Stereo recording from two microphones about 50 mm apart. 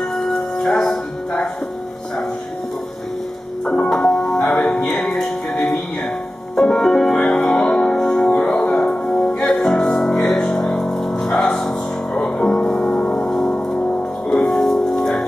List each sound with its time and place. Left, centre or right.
0.1 s music: centre
3.6 s music: centre
4.5 s music: centre
7.2 s music: left
7.8 s music: centre
8.2 s music: left
8.6 s music: centre
9.4 s music: centre